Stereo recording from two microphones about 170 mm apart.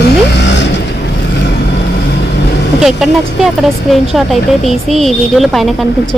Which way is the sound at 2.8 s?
Centre (ahead or behind).